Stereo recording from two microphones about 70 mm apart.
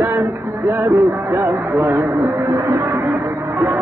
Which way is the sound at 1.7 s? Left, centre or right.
Right.